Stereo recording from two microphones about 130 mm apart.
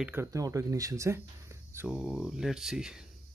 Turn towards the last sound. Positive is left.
turn(degrees=-5)  # may be behind; listen again after turning